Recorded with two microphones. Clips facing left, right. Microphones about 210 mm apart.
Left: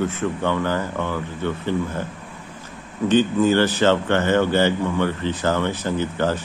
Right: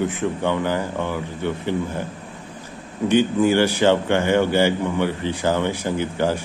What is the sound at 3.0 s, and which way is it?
Speech, 15° right (ahead or behind).